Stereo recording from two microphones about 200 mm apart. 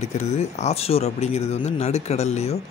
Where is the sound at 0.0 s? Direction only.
35° left (ahead or behind).